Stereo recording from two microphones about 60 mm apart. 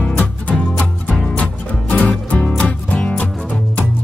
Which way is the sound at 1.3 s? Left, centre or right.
Left.